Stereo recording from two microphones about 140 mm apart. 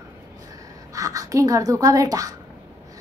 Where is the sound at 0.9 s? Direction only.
25° right (ahead or behind).